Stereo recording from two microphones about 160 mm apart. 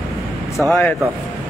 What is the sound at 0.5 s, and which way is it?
Speech, centre (ahead or behind).